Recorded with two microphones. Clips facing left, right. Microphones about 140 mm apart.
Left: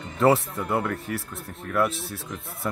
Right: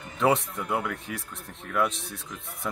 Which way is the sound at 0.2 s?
5° left (ahead or behind).